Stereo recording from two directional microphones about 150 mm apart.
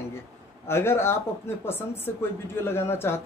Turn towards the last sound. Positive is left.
turn(degrees=15)  # may be behind; listen again after turning